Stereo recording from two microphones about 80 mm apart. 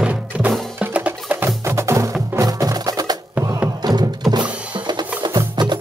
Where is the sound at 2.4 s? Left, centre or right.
Right.